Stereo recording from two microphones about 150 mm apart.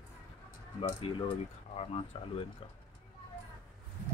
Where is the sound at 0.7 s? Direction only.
35° left (ahead or behind).